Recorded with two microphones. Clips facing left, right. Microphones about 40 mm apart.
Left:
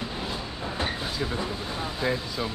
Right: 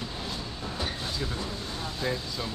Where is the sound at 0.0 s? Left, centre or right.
Centre.